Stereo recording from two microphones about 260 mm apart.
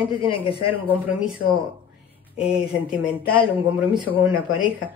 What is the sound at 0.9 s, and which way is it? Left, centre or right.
Speech, centre.